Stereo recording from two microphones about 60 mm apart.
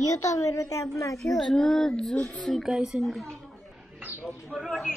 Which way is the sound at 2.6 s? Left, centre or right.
Centre.